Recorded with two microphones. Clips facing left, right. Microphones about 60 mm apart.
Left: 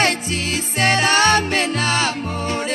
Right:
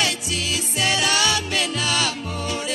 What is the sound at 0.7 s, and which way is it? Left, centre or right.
Music, left.